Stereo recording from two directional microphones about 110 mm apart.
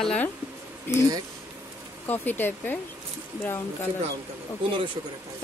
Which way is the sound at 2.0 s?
15° left (ahead or behind).